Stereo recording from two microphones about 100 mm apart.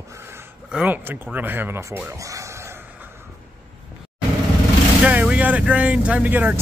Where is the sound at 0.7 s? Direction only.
10° right (ahead or behind).